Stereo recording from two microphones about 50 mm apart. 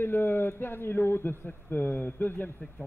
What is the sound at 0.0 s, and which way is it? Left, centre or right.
A man's voice, left.